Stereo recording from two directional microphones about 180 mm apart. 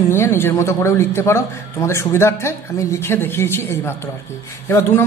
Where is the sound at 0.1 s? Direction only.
15° left (ahead or behind).